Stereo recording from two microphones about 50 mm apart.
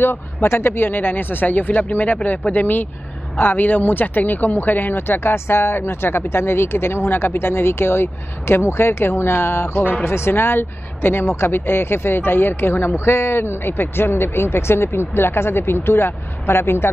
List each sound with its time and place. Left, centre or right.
0.0 s speech: left